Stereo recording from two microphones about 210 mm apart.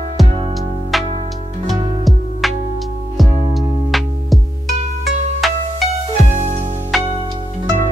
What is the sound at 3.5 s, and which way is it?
Music, centre (ahead or behind).